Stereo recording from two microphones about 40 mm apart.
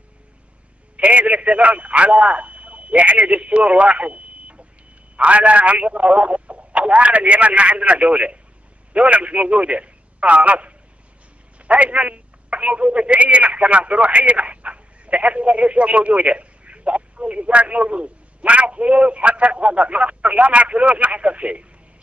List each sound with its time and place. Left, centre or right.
0.9 s a man's voice: right